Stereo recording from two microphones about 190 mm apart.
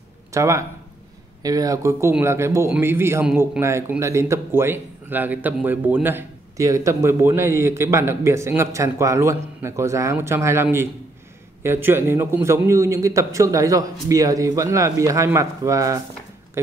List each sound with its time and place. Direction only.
0.3 s speech: 15° right (ahead or behind)